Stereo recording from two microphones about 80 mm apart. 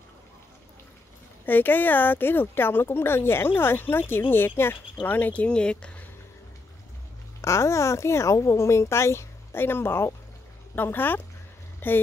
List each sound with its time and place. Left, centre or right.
1.4 s speech: left
7.4 s speech: left